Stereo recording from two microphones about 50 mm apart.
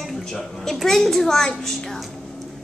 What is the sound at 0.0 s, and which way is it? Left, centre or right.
A child's voice, centre.